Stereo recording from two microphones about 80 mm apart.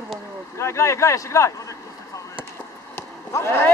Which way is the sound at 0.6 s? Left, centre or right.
Left.